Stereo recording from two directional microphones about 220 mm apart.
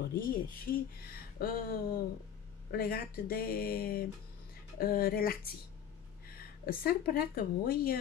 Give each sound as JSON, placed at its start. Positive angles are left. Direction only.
{"t": 0.1, "sound": "speech", "side_deg": 40}